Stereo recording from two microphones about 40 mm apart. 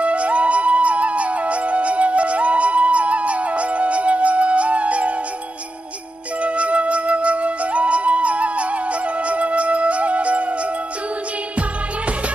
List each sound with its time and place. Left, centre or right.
0.0 s music: right
6.4 s flute: right